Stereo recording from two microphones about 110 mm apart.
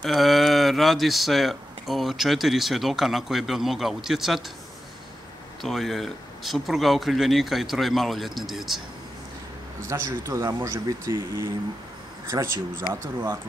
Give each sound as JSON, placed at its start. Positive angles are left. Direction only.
{"t": 0.0, "sound": "speech", "side_deg": 0}
{"t": 5.6, "sound": "speech", "side_deg": 0}
{"t": 9.8, "sound": "a man's voice", "side_deg": -25}
{"t": 12.3, "sound": "speech", "side_deg": -40}
{"t": 13.0, "sound": "a man's voice", "side_deg": -20}